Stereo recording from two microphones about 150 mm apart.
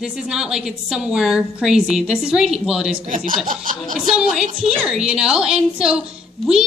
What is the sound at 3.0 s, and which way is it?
Speech, 60° right (ahead or behind).